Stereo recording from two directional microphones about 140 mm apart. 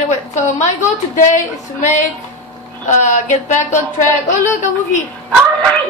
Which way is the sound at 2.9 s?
60° left (ahead or behind).